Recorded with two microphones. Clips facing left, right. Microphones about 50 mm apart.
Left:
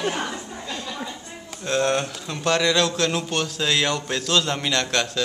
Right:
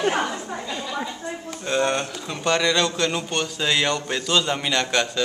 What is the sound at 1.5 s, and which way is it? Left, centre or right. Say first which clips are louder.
Speech: left 1 dB; centre.